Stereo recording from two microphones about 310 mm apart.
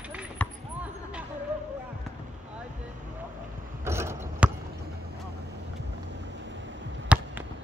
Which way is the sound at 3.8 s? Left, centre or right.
Centre.